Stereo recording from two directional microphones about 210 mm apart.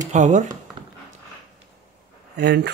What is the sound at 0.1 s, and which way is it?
Speech, 35° right (ahead or behind).